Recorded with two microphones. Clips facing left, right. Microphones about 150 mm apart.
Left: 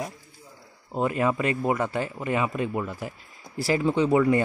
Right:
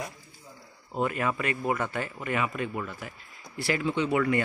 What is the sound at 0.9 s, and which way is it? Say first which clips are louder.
Speech: left 4 dB; 25° left (ahead or behind).